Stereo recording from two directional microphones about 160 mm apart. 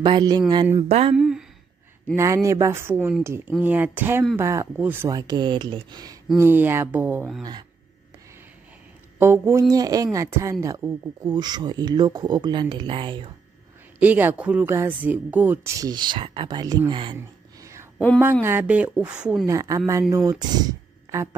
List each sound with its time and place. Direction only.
0.0 s speech: 25° right (ahead or behind)
0.8 s a sound: 40° right (ahead or behind)
1.1 s a sound: 5° right (ahead or behind)
2.1 s speech: 20° right (ahead or behind)
6.3 s speech: 15° right (ahead or behind)
9.2 s speech: 15° right (ahead or behind); by 13.3 s 30° right (ahead or behind)
13.9 s speech: 10° right (ahead or behind); by 17.6 s 30° right (ahead or behind)
18.2 s speech: 15° right (ahead or behind)
19.4 s speech: 20° right (ahead or behind)